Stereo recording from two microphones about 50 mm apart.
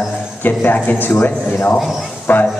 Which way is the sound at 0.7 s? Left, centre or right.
Left.